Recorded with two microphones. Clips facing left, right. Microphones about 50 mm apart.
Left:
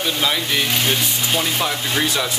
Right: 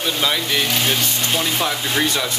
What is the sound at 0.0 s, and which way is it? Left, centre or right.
Speech, centre.